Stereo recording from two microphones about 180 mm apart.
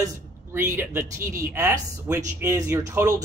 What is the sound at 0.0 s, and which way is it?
Speech, 15° right (ahead or behind).